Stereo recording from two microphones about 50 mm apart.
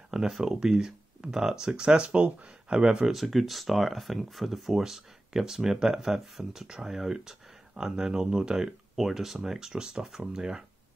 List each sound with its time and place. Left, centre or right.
0.1 s speech: centre
3.1 s speech: centre